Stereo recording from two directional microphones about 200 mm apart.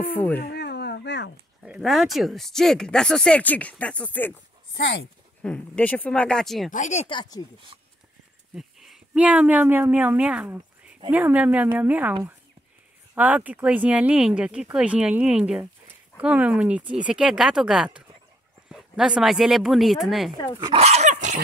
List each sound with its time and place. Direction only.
0.0 s speech: 10° left (ahead or behind)
0.4 s a sound: 55° left (ahead or behind)
1.6 s speech: centre (ahead or behind)
4.7 s speech: 55° left (ahead or behind)
5.4 s speech: 5° left (ahead or behind)
6.7 s speech: 35° left (ahead or behind); by 7.4 s 20° left (ahead or behind)
8.5 s speech: centre (ahead or behind)
20.5 s speech: 20° right (ahead or behind)
20.8 s dog: 35° right (ahead or behind)